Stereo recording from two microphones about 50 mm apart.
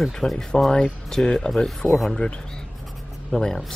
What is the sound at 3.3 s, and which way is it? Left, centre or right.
Speech, centre.